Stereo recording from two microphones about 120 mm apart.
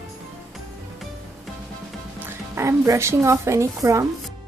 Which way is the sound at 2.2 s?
25° right (ahead or behind).